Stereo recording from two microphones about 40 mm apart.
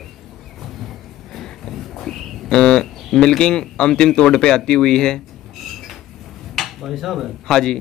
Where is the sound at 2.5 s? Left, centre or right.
Centre.